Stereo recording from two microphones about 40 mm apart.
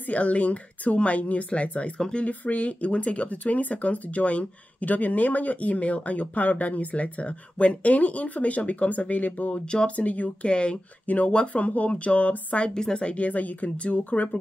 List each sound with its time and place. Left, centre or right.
0.0 s speech: left
2.0 s speech: centre
2.2 s speech: left
10.5 s speech: left
11.1 s speech: left
12.7 s speech: left